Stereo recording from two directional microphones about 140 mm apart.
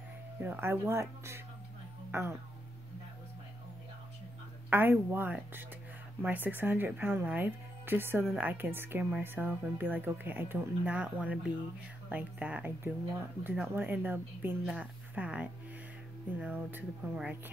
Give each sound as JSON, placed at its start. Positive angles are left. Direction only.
{"t": 0.4, "sound": "speech", "side_deg": -15}
{"t": 2.0, "sound": "music", "side_deg": -15}
{"t": 4.6, "sound": "speech", "side_deg": -15}